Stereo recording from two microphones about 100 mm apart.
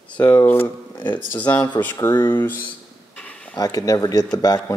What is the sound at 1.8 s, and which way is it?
Speech, 40° left (ahead or behind).